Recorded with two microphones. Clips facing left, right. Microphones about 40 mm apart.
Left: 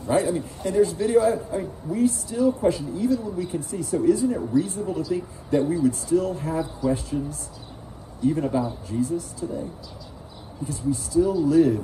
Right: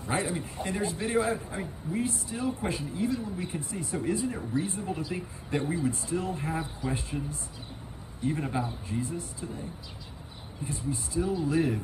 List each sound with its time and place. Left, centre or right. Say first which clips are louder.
0.0 s a man's voice: left 8 dB; right
10.6 s a man's voice: left 7 dB; right